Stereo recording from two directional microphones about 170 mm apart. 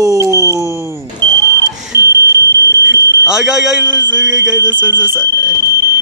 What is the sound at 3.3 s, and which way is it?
A man's voice, 5° right (ahead or behind).